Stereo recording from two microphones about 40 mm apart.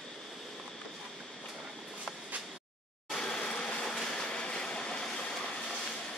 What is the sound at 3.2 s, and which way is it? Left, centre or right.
Vehicle, centre.